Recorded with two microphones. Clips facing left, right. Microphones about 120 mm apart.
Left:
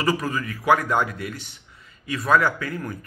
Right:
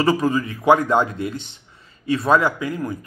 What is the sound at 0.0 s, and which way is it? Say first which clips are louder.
Speech: right 6 dB; 25° right (ahead or behind).